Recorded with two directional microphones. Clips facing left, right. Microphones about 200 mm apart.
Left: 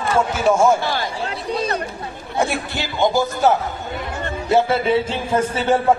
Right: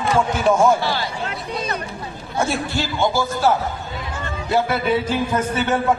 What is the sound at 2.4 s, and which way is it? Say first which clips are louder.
A man's voice: even; 15° left (ahead or behind).